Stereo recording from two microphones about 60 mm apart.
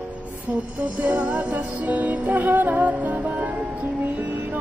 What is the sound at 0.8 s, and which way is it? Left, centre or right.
Music, right.